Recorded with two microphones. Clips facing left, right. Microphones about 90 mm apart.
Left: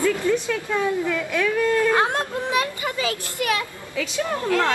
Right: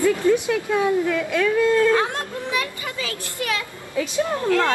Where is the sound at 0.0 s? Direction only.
15° right (ahead or behind).